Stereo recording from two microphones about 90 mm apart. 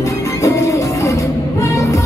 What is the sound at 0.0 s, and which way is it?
Music, 35° left (ahead or behind).